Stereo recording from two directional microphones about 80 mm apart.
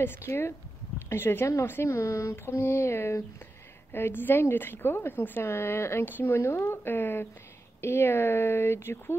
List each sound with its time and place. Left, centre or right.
0.0 s a woman's voice: left